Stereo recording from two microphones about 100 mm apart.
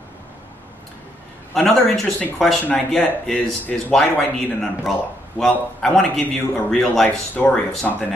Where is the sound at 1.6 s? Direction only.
Centre (ahead or behind).